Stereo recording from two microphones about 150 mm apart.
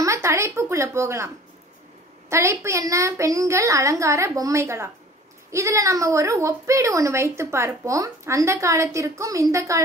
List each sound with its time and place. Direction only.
0.0 s speech: 20° right (ahead or behind)